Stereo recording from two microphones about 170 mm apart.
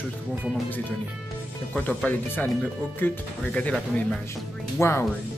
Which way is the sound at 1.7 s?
10° left (ahead or behind).